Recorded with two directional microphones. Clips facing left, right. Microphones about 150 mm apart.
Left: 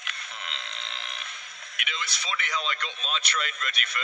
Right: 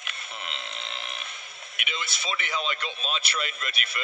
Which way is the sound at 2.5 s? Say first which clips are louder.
Right 1 dB; 5° right (ahead or behind).